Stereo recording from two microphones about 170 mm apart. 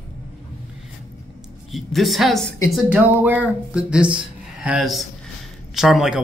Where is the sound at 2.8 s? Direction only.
5° right (ahead or behind).